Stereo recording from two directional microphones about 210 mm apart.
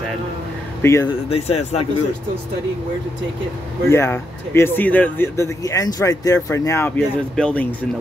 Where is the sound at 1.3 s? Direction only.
30° left (ahead or behind).